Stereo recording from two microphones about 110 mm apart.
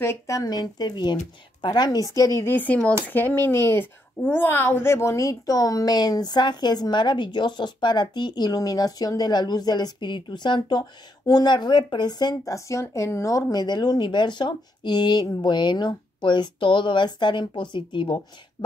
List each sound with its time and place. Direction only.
0.0 s a woman's voice: 25° left (ahead or behind); by 18.2 s 50° left (ahead or behind)